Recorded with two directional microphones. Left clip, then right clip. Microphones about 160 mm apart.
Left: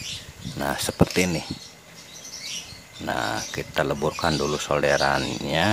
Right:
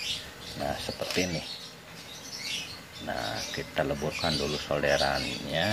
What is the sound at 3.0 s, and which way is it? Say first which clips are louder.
Speech: left 7 dB; 40° left (ahead or behind).